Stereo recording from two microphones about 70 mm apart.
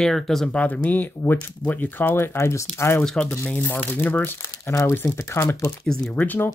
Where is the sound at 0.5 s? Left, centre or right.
Centre; by 3.0 s left.